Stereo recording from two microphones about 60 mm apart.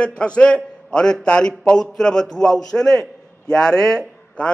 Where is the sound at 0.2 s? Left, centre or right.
Centre.